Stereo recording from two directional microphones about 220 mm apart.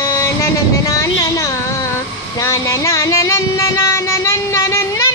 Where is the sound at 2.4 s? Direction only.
15° left (ahead or behind).